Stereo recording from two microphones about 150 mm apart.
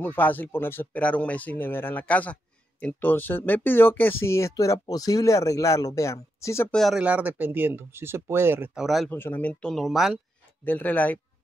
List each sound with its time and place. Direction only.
0.0 s speech: 10° left (ahead or behind)
6.7 s speech: centre (ahead or behind)
7.0 s speech: 10° right (ahead or behind)
8.8 s speech: centre (ahead or behind)
9.1 s speech: 10° left (ahead or behind)
10.6 s speech: 10° left (ahead or behind)